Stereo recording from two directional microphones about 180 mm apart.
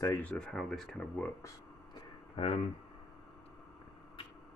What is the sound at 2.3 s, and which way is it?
Speech, 30° left (ahead or behind).